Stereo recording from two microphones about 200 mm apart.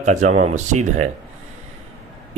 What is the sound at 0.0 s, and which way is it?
Speech, 35° right (ahead or behind).